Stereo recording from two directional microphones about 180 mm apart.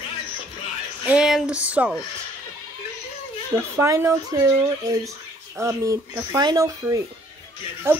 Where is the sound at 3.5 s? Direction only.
15° right (ahead or behind).